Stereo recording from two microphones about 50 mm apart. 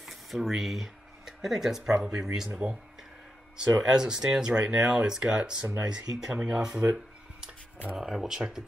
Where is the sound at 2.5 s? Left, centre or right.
Right.